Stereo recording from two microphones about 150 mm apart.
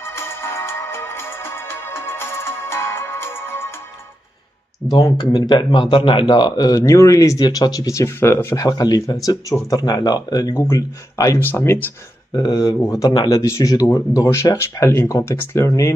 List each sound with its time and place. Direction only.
0.1 s music: 15° left (ahead or behind)
4.8 s speech: 25° left (ahead or behind)
12.4 s speech: 30° left (ahead or behind)